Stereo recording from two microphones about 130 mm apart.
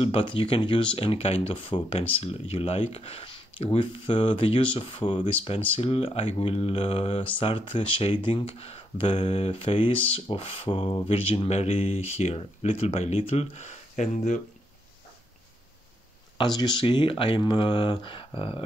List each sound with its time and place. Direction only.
0.0 s speech: 40° left (ahead or behind)
5.0 s speech: 25° left (ahead or behind)
5.8 s speech: 50° left (ahead or behind); by 14.4 s 70° left (ahead or behind)
16.3 s speech: 35° left (ahead or behind)